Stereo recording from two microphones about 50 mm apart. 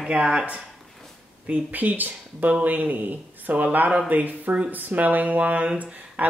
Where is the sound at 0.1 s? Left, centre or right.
Centre.